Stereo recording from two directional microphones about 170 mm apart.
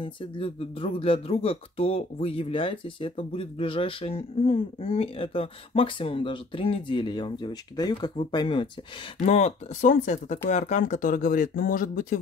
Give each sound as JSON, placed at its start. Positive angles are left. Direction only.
{"t": 0.0, "sound": "speech", "side_deg": 30}
{"t": 9.2, "sound": "speech", "side_deg": 45}